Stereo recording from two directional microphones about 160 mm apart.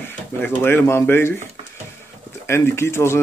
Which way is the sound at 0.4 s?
15° left (ahead or behind).